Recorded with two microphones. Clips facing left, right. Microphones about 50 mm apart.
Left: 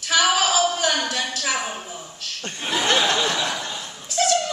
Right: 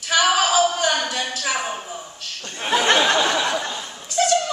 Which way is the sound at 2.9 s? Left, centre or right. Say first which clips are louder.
Right 1 dB; right.